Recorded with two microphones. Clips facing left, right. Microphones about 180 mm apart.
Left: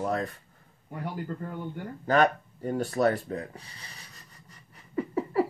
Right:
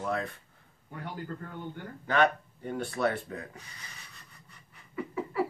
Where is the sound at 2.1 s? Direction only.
40° left (ahead or behind).